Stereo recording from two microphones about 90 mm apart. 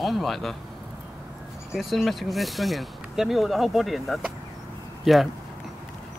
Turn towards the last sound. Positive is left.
turn(degrees=0)  # may be behind; listen again after turning